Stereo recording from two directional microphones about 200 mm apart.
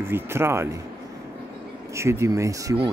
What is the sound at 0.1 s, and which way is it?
Speech, 10° right (ahead or behind).